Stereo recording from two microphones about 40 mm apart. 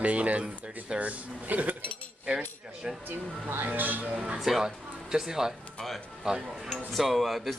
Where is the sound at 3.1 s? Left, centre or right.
Right.